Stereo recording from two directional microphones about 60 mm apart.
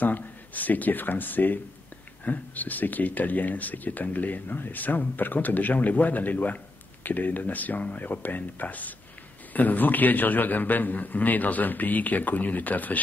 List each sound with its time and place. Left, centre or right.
0.0 s speech: left